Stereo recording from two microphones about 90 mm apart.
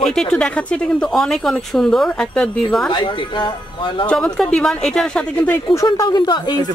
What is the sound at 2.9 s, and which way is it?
Speech, 65° left (ahead or behind).